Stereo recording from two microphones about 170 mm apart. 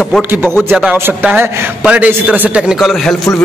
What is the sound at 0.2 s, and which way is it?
A man's voice, 10° right (ahead or behind).